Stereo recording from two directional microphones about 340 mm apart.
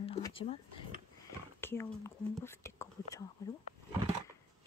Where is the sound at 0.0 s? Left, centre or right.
Centre.